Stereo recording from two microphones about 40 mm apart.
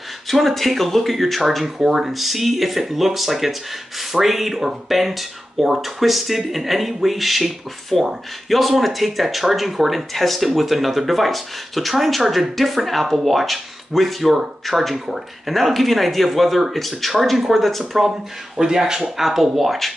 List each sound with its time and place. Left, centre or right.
0.3 s speech: centre
1.8 s speech: centre
18.6 s speech: centre
19.1 s speech: centre